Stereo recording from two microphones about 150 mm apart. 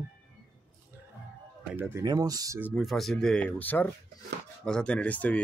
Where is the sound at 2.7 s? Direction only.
Centre (ahead or behind).